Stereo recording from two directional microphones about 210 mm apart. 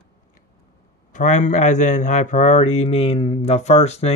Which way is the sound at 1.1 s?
35° left (ahead or behind).